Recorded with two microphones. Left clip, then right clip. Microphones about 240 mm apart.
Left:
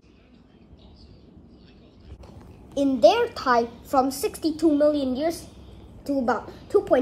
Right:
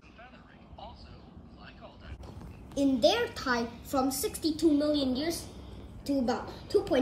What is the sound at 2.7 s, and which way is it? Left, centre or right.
A woman's voice, centre.